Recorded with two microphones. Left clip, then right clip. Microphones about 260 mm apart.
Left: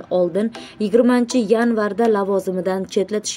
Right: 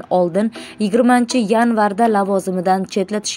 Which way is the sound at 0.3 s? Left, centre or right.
Right.